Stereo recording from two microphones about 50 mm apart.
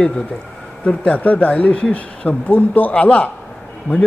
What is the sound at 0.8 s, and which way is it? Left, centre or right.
A man's voice, left.